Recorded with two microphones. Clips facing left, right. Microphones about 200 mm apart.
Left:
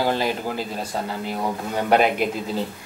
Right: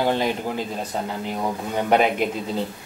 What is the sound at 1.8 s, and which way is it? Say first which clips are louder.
Speech: left 1 dB; 5° left (ahead or behind).